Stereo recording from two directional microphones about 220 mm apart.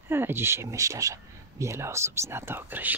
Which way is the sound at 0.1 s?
10° right (ahead or behind).